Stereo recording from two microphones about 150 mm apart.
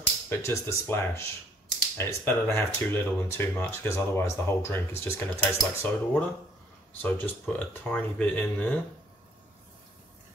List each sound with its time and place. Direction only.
0.3 s speech: 15° left (ahead or behind)